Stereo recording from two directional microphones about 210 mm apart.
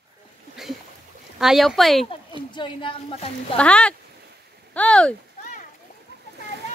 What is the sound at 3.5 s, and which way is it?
Speech, 5° left (ahead or behind).